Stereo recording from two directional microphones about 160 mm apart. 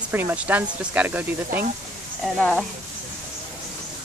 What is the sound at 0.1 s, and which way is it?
Speech, 10° right (ahead or behind).